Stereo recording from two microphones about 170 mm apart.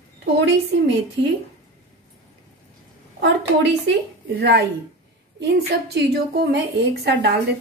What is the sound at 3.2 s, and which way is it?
A woman's voice, 90° right.